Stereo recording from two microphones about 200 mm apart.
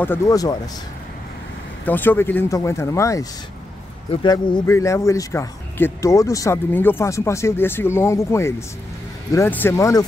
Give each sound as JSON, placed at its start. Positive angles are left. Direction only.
{"t": 0.0, "sound": "speech", "side_deg": 15}
{"t": 1.9, "sound": "speech", "side_deg": 10}